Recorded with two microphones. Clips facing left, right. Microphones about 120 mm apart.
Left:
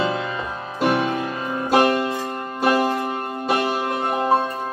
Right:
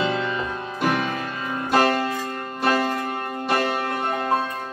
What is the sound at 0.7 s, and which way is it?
Music, 30° left (ahead or behind).